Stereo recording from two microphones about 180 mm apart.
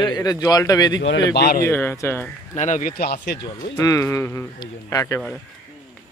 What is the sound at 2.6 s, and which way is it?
Speech, 45° left (ahead or behind).